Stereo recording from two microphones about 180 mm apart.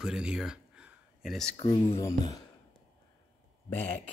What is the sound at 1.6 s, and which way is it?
Speech, 30° left (ahead or behind).